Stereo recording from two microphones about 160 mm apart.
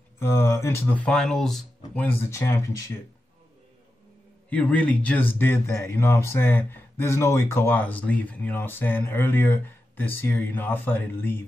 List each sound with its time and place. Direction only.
0.2 s speech: 15° left (ahead or behind); by 1.7 s centre (ahead or behind)
2.0 s speech: 15° left (ahead or behind)
4.5 s speech: 10° left (ahead or behind)